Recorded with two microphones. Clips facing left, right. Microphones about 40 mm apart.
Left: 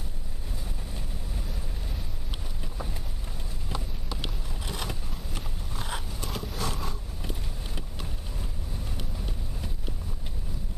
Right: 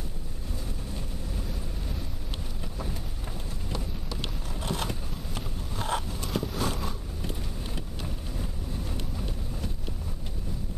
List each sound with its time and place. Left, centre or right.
3.6 s clip-clop: centre
4.6 s vehicle: centre